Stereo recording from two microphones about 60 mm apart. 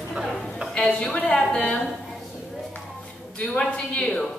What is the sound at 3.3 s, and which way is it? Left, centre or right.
Speech, centre.